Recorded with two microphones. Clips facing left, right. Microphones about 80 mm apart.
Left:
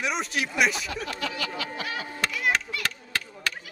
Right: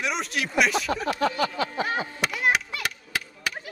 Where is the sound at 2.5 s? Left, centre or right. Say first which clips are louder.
Right 2 dB; centre.